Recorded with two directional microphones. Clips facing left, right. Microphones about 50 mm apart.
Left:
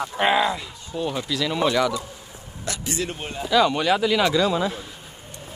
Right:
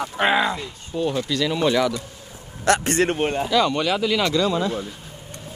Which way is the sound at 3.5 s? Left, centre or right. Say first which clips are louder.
Left 4 dB; centre.